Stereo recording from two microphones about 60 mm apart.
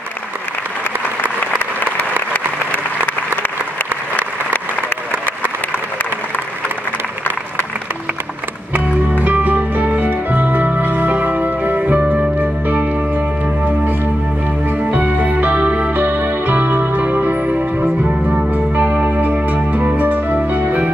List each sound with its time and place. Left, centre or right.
2.3 s applause: left
4.8 s applause: left
8.7 s music: right
14.8 s music: right